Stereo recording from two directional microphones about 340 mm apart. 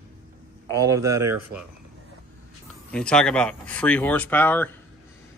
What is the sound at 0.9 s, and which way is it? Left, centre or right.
Speech, centre.